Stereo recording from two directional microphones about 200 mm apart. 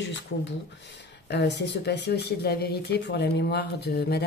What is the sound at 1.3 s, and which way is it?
Speech, 60° left (ahead or behind).